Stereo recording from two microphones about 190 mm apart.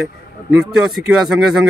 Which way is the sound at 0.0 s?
5° right (ahead or behind).